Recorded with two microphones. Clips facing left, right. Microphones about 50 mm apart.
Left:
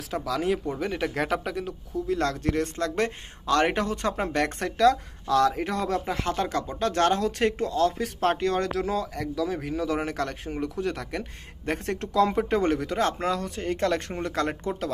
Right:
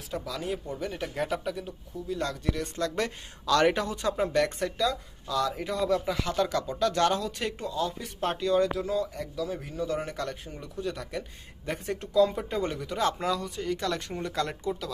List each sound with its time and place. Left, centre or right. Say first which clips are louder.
0.1 s speech: left 6 dB; left
3.8 s speech: left 1 dB; left
6.0 s speech: left 1 dB; left
12.9 s speech: left 2 dB; left